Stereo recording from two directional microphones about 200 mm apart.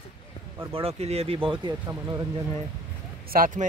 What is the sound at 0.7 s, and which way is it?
Speech, 30° right (ahead or behind).